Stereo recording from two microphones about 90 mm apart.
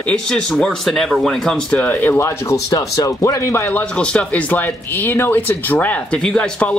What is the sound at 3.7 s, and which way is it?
Speech, 10° left (ahead or behind).